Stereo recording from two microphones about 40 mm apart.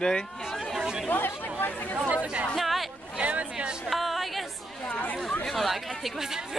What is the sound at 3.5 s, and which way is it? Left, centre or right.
Music, centre.